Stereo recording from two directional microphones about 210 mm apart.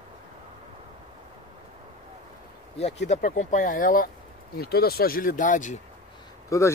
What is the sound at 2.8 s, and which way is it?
Speech, 30° left (ahead or behind).